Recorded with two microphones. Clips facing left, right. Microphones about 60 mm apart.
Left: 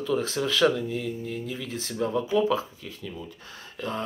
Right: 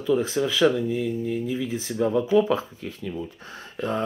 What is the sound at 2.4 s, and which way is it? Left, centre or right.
Speech, right.